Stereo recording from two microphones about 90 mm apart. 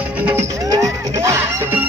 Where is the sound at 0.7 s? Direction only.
35° right (ahead or behind).